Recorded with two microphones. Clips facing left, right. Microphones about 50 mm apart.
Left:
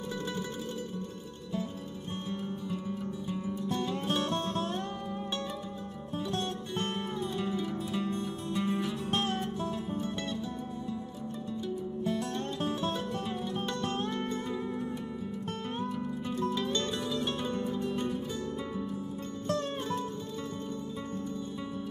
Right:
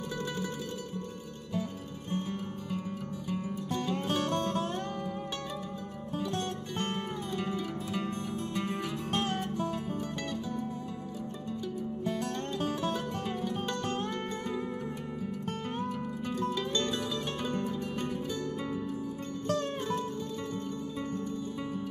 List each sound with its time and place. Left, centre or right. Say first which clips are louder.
2.0 s music: right 4 dB; right
6.9 s music: left 1 dB; right
8.5 s music: left 5 dB; centre
16.7 s music: even; left